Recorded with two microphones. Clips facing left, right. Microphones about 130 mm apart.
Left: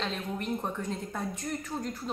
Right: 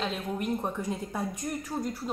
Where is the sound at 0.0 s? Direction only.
10° right (ahead or behind).